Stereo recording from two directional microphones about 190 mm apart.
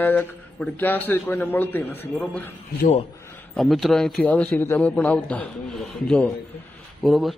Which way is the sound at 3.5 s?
Centre (ahead or behind).